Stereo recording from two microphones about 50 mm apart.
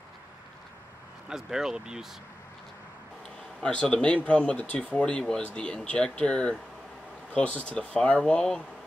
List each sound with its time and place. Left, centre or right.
1.3 s speech: centre
3.7 s speech: centre